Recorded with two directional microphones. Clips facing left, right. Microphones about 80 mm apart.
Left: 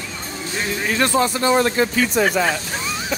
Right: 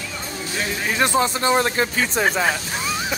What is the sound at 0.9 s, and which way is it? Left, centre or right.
Speech, centre.